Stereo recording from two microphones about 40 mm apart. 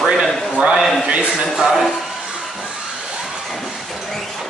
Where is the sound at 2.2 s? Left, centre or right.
Centre.